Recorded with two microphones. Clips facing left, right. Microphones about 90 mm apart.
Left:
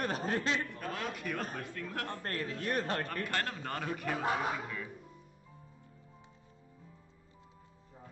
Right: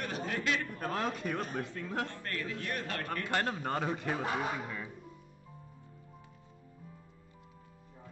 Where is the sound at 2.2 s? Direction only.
35° left (ahead or behind).